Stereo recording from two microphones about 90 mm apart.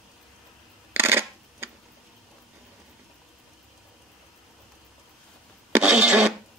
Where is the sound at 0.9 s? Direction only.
25° right (ahead or behind).